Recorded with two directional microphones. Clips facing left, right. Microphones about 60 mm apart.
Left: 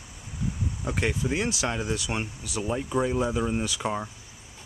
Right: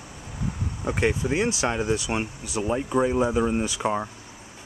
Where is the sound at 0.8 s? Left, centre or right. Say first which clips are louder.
Right 4 dB; right.